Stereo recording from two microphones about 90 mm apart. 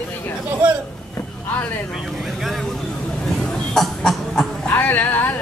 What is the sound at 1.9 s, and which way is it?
Vehicle, centre (ahead or behind).